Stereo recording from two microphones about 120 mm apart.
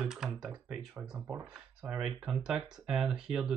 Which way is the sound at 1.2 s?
25° right (ahead or behind).